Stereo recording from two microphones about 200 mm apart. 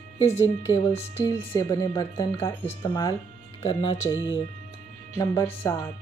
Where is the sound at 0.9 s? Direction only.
20° left (ahead or behind).